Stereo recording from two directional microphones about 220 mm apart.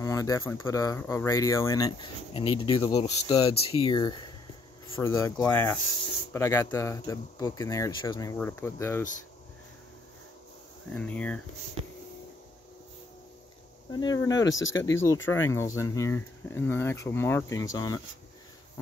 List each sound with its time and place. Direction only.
0.0 s speech: 15° left (ahead or behind)
10.9 s speech: 5° left (ahead or behind)
13.9 s speech: 15° left (ahead or behind)